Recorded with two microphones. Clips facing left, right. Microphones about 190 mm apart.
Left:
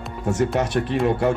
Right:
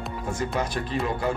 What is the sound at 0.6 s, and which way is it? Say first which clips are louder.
Speech: left 6 dB; 70° left (ahead or behind).